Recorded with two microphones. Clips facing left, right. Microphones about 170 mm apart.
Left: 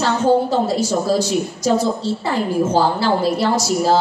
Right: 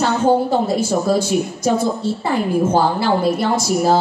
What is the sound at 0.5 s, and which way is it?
Speech, 55° right (ahead or behind).